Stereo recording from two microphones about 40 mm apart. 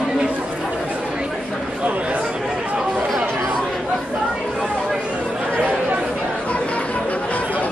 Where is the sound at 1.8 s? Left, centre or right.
Right.